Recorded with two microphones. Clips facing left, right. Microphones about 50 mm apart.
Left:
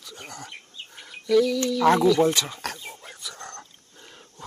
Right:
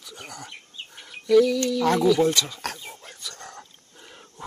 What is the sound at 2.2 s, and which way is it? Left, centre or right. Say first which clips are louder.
Speech: even; centre.